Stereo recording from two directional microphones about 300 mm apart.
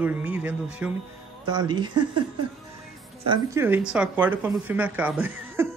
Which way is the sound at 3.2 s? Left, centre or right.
Centre.